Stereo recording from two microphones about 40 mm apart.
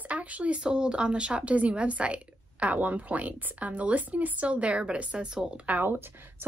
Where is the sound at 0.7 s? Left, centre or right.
Right.